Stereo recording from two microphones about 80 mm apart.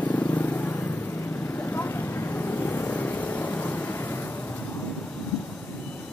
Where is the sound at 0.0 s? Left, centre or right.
Left.